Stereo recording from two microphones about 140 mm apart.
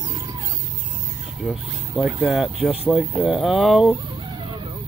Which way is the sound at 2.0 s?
5° right (ahead or behind).